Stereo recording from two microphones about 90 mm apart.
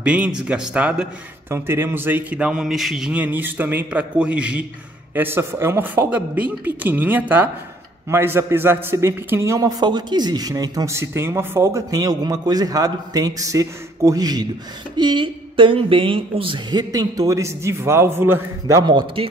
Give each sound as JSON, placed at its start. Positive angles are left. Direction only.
{"t": 0.0, "sound": "a man's voice", "side_deg": -15}
{"t": 1.5, "sound": "a man's voice", "side_deg": -25}
{"t": 2.3, "sound": "a man's voice", "side_deg": -10}
{"t": 3.1, "sound": "a man's voice", "side_deg": -20}
{"t": 5.1, "sound": "a man's voice", "side_deg": -25}
{"t": 6.0, "sound": "a man's voice", "side_deg": -15}
{"t": 9.8, "sound": "speech", "side_deg": -55}
{"t": 10.9, "sound": "speech", "side_deg": -30}
{"t": 15.0, "sound": "speech", "side_deg": -60}
{"t": 16.7, "sound": "speech", "side_deg": -50}
{"t": 17.4, "sound": "a man's voice", "side_deg": -35}
{"t": 18.7, "sound": "speech", "side_deg": -50}